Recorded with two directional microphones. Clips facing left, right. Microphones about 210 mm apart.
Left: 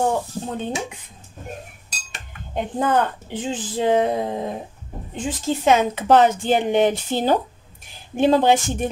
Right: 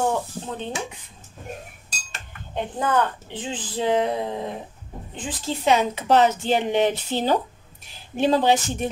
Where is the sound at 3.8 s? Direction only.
45° left (ahead or behind).